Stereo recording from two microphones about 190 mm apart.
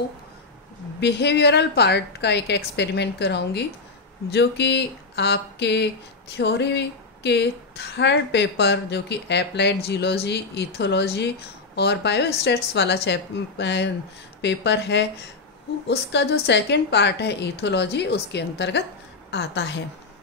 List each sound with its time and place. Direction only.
1.0 s a woman's voice: 60° left (ahead or behind)